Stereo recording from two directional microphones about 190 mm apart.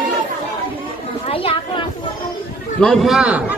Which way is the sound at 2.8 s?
Centre (ahead or behind).